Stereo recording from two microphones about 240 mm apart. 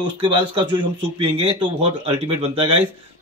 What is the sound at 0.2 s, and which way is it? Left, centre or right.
Speech, centre.